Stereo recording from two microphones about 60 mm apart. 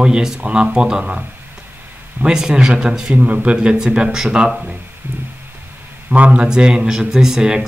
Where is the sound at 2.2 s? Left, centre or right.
Centre.